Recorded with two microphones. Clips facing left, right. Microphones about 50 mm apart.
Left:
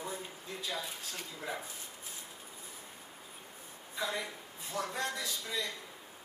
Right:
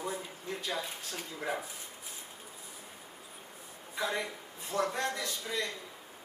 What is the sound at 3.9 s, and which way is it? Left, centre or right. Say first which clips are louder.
A man's voice: right 3 dB; right.